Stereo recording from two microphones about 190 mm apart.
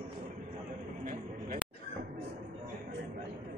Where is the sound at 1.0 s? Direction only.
45° right (ahead or behind).